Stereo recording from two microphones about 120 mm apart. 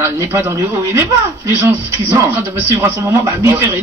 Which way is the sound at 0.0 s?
20° right (ahead or behind).